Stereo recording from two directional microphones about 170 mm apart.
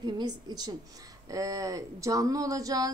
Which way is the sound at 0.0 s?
25° right (ahead or behind).